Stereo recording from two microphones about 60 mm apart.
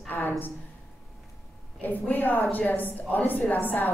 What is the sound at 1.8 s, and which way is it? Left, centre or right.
A woman's voice, left.